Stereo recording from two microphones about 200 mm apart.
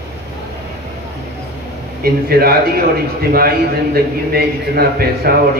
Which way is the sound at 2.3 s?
50° right (ahead or behind).